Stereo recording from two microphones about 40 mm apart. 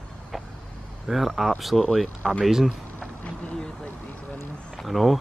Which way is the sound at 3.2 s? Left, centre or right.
Left.